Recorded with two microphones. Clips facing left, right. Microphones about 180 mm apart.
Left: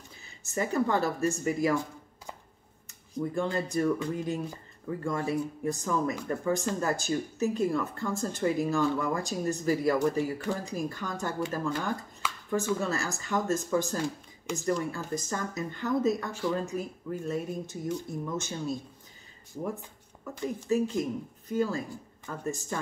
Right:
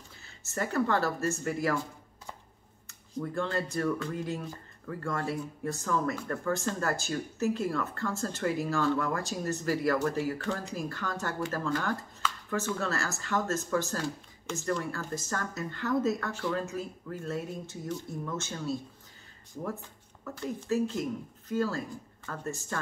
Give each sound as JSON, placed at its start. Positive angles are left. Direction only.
{"t": 0.2, "sound": "speech", "side_deg": 15}
{"t": 3.2, "sound": "speech", "side_deg": 15}
{"t": 20.2, "sound": "speech", "side_deg": 15}